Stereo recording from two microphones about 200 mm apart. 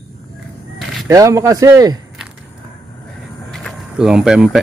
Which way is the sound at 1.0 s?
15° right (ahead or behind).